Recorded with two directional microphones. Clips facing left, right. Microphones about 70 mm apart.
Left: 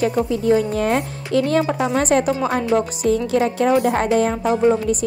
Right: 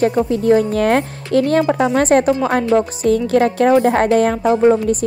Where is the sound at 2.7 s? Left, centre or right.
Right.